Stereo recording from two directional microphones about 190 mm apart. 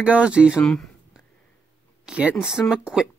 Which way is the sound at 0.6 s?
5° left (ahead or behind).